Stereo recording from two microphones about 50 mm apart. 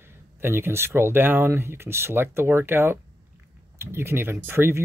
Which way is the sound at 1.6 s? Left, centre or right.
Right.